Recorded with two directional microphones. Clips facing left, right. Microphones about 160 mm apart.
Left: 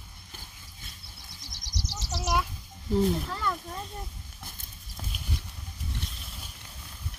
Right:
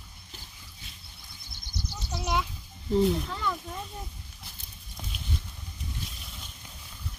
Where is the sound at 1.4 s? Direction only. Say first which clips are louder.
Even; 90° left.